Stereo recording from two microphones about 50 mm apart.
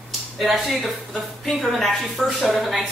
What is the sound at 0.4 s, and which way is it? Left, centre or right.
A woman's voice, centre.